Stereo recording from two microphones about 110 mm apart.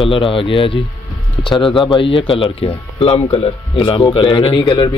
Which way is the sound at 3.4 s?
50° left (ahead or behind).